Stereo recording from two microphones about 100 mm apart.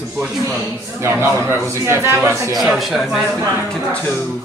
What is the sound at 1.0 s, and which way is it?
A man's voice, 25° right (ahead or behind).